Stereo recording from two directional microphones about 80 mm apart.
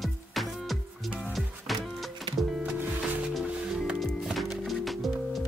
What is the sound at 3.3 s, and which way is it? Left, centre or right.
Music, centre.